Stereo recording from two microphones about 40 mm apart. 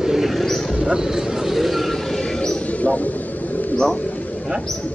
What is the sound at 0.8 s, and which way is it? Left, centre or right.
Vehicle, centre.